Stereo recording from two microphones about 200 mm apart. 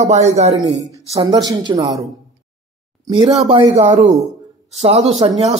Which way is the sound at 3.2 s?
Centre (ahead or behind).